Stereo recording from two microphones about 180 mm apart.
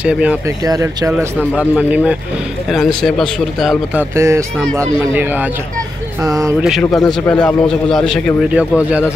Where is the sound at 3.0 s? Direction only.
5° left (ahead or behind); by 6.5 s 20° right (ahead or behind).